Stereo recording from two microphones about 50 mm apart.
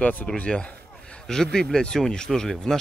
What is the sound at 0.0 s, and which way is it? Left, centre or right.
Speech, left.